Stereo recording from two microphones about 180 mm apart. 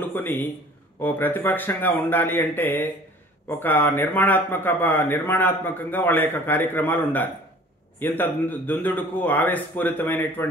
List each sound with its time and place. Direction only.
0.1 s a man's voice: 10° left (ahead or behind)